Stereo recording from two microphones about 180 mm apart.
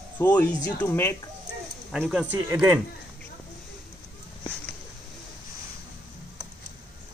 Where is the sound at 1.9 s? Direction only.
Centre (ahead or behind).